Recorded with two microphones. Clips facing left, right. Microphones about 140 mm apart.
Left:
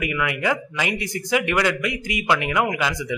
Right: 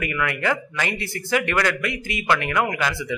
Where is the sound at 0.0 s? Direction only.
15° left (ahead or behind).